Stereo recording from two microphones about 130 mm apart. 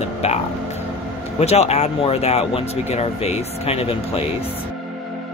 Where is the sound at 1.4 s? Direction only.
55° left (ahead or behind).